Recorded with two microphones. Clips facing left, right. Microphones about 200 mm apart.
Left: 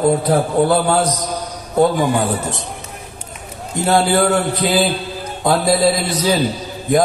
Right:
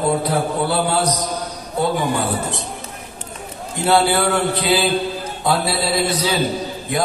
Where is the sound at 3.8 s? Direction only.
45° left (ahead or behind).